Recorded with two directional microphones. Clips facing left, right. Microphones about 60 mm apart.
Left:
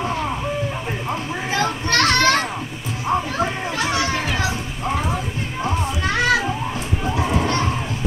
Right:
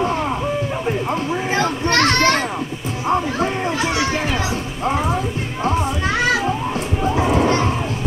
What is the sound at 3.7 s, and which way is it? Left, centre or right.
Children playing, right.